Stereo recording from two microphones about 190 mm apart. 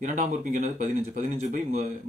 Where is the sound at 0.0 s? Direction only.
40° right (ahead or behind).